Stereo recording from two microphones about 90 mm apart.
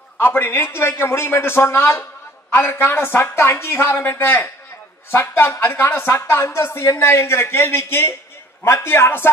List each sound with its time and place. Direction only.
0.2 s speech: 25° left (ahead or behind)